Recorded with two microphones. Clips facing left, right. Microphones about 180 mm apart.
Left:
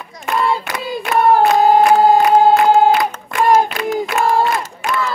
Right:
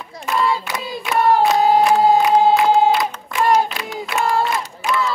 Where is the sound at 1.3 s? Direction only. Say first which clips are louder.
Left 3 dB; 55° left (ahead or behind).